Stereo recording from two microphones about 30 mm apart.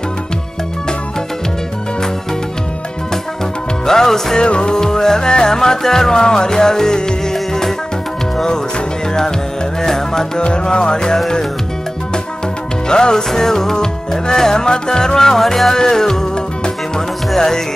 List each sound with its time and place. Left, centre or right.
3.8 s music: centre
4.4 s music: left
9.8 s music: centre
10.4 s music: left
12.8 s music: left